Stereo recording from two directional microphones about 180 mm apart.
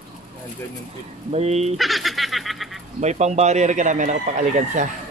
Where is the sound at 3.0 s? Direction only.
40° right (ahead or behind).